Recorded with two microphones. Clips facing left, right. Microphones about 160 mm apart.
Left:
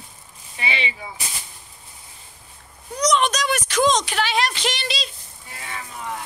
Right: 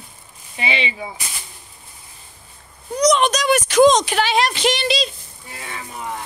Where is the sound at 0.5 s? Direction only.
20° right (ahead or behind).